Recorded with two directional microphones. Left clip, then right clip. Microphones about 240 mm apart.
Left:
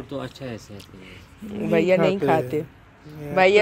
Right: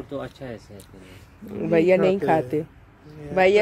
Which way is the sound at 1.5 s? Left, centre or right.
Right.